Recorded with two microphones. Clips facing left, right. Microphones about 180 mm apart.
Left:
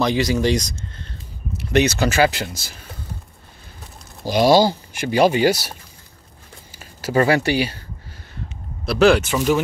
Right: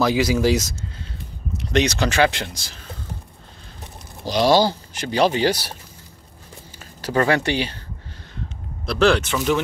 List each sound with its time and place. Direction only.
0.0 s speech: 5° right (ahead or behind)
1.6 s speech: 5° left (ahead or behind)
4.3 s speech: 10° left (ahead or behind)
6.8 s speech: 10° left (ahead or behind)
8.8 s speech: 5° left (ahead or behind)